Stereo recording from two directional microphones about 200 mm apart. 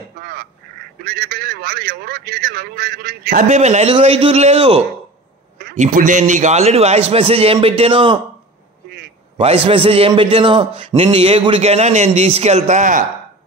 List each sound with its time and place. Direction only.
0.2 s quack: 50° right (ahead or behind)
1.0 s a man's voice: 50° right (ahead or behind)
3.4 s a man's voice: 35° right (ahead or behind)
5.9 s a man's voice: 40° right (ahead or behind)
9.4 s a man's voice: 30° right (ahead or behind)